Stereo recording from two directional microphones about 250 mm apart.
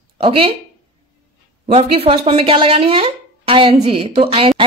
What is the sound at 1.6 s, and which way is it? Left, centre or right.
A woman's voice, right.